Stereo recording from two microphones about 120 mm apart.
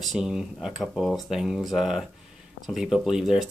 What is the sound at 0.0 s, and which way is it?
Speech, 5° right (ahead or behind).